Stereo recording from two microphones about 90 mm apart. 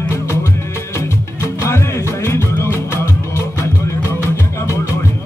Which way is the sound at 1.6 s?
30° left (ahead or behind).